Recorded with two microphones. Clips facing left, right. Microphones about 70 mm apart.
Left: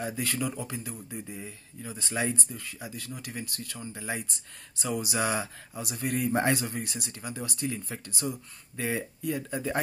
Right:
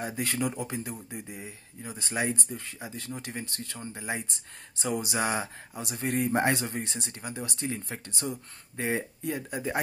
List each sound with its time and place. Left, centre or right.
0.0 s speech: right